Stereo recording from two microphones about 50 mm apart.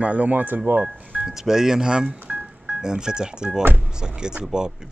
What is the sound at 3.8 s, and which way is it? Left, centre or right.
Speech, centre.